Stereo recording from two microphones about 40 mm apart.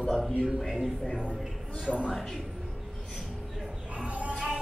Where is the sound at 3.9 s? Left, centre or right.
Right.